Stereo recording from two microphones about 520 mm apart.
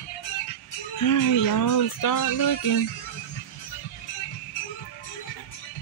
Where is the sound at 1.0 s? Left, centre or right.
Left.